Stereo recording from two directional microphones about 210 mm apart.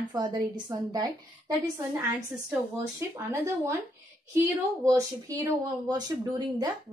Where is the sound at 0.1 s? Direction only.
20° right (ahead or behind).